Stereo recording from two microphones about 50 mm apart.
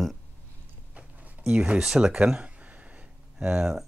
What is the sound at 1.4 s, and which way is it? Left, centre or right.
Speech, right.